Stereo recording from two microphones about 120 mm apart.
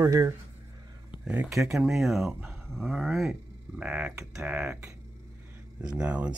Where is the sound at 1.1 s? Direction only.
10° right (ahead or behind).